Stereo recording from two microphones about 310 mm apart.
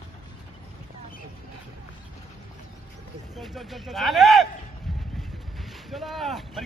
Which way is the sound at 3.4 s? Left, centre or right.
Centre.